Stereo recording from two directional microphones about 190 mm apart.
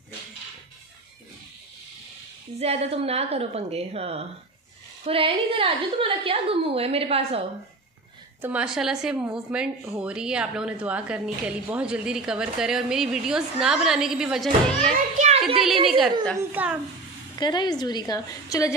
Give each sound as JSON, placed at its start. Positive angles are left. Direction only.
{"t": 2.6, "sound": "a woman's voice", "side_deg": -35}
{"t": 8.4, "sound": "a woman's voice", "side_deg": -5}
{"t": 14.9, "sound": "a child's voice", "side_deg": -35}
{"t": 16.3, "sound": "a woman's voice", "side_deg": -5}
{"t": 17.4, "sound": "a woman's voice", "side_deg": 20}